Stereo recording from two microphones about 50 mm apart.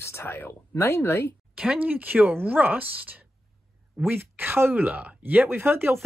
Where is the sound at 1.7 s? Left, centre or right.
Right.